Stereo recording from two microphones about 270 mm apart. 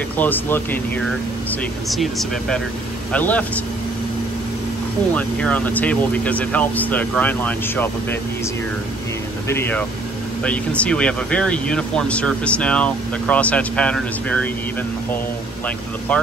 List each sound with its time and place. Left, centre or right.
0.2 s speech: centre
5.1 s speech: centre
9.5 s speech: centre